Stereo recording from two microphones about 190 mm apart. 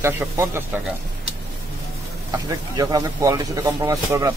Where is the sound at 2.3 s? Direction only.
20° right (ahead or behind).